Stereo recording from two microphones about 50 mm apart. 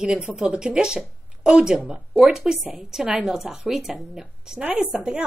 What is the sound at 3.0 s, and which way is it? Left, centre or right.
Speech, right.